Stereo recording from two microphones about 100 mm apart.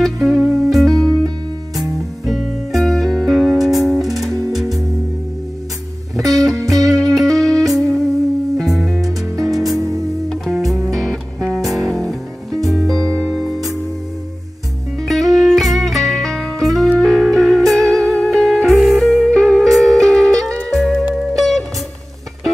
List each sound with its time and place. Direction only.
0.0 s music: centre (ahead or behind)
6.9 s music: 5° left (ahead or behind)
9.8 s music: 30° right (ahead or behind)
10.3 s music: centre (ahead or behind)
15.0 s music: centre (ahead or behind)